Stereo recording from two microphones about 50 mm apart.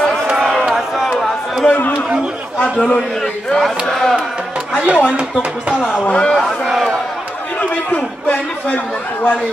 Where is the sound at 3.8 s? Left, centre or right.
Centre.